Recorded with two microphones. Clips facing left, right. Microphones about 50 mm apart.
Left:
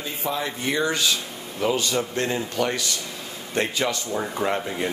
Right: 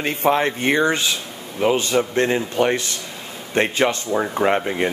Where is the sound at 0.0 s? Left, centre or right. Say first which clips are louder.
Right 9 dB; right.